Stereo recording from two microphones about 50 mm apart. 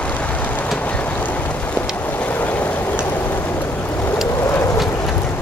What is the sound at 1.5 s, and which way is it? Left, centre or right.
Vehicle, left.